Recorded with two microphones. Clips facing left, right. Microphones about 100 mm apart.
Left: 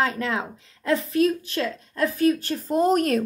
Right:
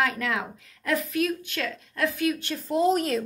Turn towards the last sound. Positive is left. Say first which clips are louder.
# left 3 dB
turn(degrees=55)  # may be behind; listen again after turning